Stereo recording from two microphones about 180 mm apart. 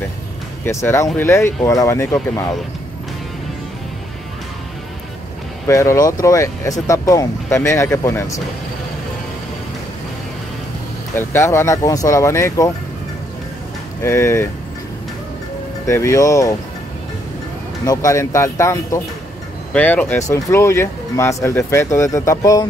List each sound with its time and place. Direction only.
0.7 s speech: 15° left (ahead or behind)
5.7 s speech: 15° left (ahead or behind)
11.1 s speech: 15° left (ahead or behind)
14.0 s speech: 15° left (ahead or behind)
15.9 s speech: 15° left (ahead or behind)
17.8 s speech: 15° left (ahead or behind)